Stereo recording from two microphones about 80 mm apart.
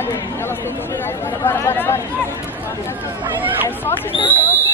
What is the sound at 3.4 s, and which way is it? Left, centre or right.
Speech, right.